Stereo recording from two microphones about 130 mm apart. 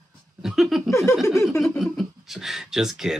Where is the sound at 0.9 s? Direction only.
20° left (ahead or behind).